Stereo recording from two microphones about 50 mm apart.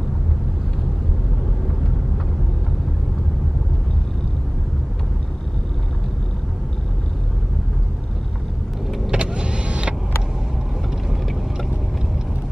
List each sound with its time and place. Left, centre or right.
9.1 s power windows: centre
11.1 s vehicle: centre